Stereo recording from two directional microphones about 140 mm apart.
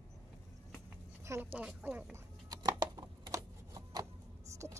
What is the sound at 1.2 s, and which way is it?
Speech, 15° right (ahead or behind).